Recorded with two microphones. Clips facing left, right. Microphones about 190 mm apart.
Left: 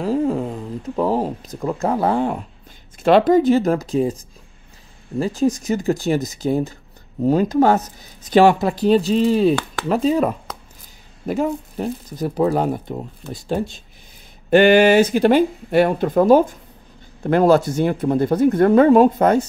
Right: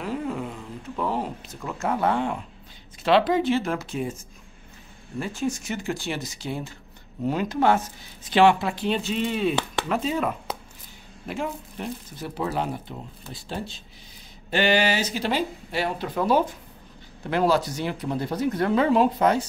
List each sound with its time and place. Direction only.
0.0 s speech: 35° left (ahead or behind)
5.2 s speech: 35° left (ahead or behind)